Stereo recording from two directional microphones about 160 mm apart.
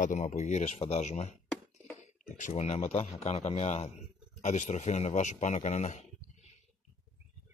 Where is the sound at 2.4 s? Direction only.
40° left (ahead or behind).